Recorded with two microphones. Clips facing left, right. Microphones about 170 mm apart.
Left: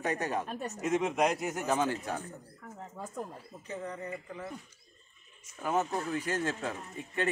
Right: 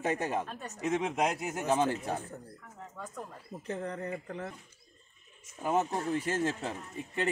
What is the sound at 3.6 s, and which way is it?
Speech, 60° right (ahead or behind).